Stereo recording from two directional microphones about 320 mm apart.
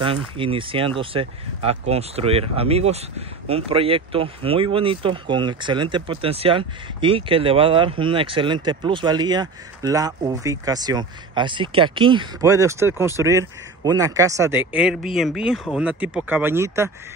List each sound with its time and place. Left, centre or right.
0.0 s speech: centre